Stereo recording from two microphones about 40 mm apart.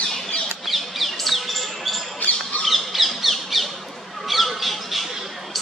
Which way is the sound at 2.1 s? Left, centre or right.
Left.